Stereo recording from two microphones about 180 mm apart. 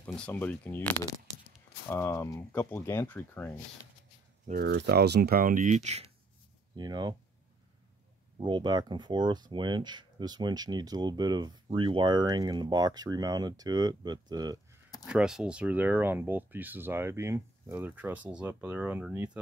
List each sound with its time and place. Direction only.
0.0 s speech: 5° left (ahead or behind)
4.5 s speech: 65° right (ahead or behind); by 6.0 s 40° right (ahead or behind)
6.8 s speech: 20° right (ahead or behind)
8.4 s speech: 25° right (ahead or behind)
15.0 s speech: 5° right (ahead or behind)